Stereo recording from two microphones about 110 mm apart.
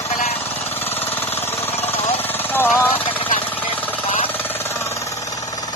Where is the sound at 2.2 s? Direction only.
20° left (ahead or behind).